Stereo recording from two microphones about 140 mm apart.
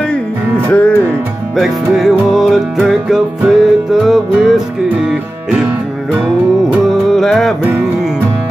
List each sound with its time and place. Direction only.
0.7 s music: 10° left (ahead or behind)
1.6 s music: 5° right (ahead or behind)